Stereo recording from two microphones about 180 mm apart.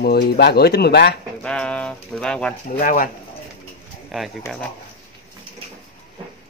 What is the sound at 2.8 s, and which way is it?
Speech, 45° left (ahead or behind).